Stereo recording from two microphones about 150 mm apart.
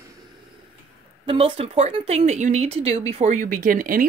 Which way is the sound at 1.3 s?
40° right (ahead or behind).